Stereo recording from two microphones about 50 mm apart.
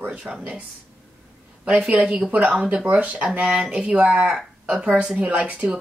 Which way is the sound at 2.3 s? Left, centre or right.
Right.